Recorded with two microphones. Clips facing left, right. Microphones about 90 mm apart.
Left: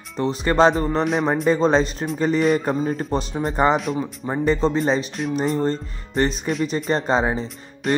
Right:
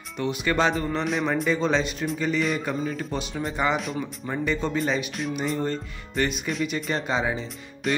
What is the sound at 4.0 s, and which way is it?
Speech, 30° left (ahead or behind).